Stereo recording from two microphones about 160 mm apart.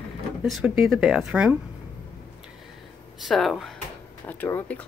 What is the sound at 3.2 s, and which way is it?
Speech, centre (ahead or behind).